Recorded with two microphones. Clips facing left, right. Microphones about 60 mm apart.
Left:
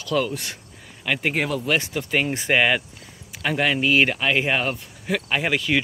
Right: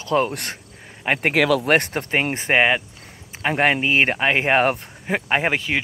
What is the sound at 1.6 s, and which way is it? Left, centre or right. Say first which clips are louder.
Speech: right 4 dB; right.